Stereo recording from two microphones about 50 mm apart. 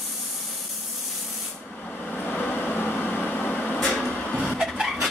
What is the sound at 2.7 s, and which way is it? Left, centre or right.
Microwave oven, left.